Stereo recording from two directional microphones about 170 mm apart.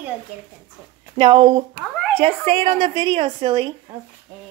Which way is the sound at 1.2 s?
30° right (ahead or behind).